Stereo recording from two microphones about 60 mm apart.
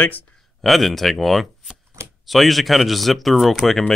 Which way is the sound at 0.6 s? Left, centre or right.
Centre.